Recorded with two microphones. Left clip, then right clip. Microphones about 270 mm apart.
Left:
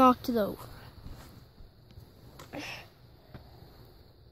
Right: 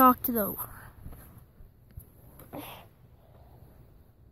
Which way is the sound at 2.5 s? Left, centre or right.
Right.